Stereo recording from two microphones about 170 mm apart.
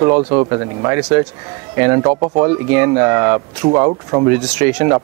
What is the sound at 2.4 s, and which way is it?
Speech, 15° right (ahead or behind).